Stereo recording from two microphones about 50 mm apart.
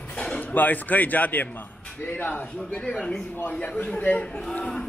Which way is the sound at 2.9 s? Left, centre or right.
Left.